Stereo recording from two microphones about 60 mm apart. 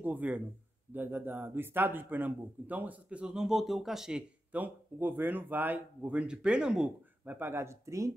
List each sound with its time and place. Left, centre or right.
0.0 s a man's voice: right
3.3 s speech: centre
4.5 s a man's voice: right
6.0 s speech: centre
7.2 s speech: right